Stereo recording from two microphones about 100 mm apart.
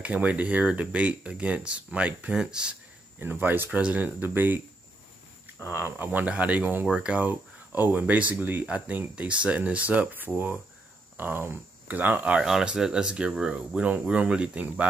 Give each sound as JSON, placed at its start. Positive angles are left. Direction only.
{"t": 0.0, "sound": "speech", "side_deg": -15}
{"t": 5.6, "sound": "speech", "side_deg": -25}